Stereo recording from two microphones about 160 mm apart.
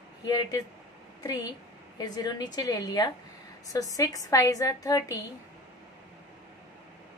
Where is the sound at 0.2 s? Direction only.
25° left (ahead or behind).